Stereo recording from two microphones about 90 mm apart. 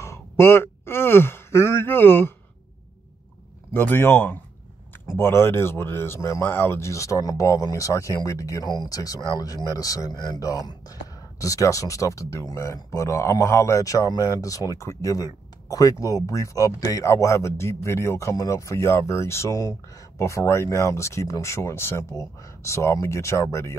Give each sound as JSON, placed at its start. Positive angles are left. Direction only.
{"t": 0.0, "sound": "speech", "side_deg": 30}
{"t": 3.7, "sound": "speech", "side_deg": 25}